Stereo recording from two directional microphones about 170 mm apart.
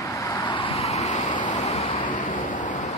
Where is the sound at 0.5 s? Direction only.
30° left (ahead or behind).